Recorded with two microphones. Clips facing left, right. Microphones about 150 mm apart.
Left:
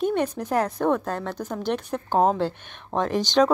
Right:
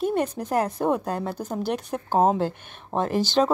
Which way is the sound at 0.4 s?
10° right (ahead or behind).